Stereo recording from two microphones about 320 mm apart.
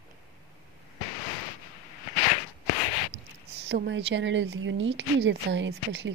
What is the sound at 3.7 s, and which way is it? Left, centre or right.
Speech, right.